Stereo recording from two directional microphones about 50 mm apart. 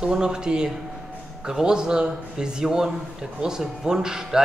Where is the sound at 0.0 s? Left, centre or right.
Centre.